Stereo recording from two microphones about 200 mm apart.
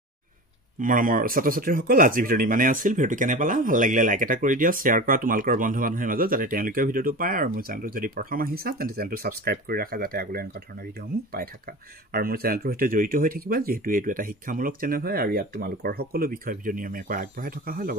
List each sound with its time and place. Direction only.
0.7 s speech: 40° right (ahead or behind)
12.1 s speech: 50° right (ahead or behind)